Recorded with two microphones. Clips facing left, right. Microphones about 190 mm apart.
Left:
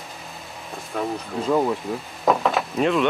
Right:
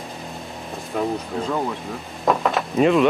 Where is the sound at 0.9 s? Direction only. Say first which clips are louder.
Right 3 dB; centre (ahead or behind).